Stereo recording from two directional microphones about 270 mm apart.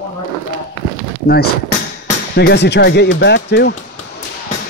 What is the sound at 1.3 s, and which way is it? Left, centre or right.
Speech, left.